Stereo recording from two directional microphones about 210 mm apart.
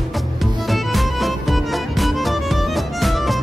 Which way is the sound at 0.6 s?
Centre (ahead or behind).